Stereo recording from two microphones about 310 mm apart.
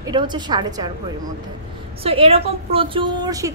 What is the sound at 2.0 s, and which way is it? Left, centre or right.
A woman's voice, centre.